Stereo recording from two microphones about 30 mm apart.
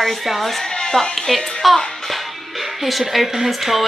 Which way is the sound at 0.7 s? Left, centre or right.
Left.